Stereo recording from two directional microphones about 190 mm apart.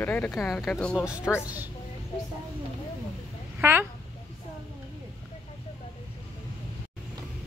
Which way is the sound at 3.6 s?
10° right (ahead or behind).